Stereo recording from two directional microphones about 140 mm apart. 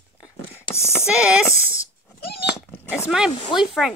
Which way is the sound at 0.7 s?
20° left (ahead or behind).